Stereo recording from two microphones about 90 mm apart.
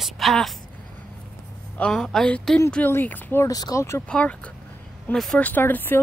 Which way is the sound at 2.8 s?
20° left (ahead or behind).